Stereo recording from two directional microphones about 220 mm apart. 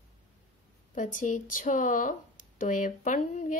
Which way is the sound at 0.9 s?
35° left (ahead or behind).